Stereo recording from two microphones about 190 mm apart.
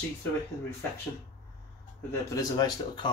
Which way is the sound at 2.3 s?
20° left (ahead or behind).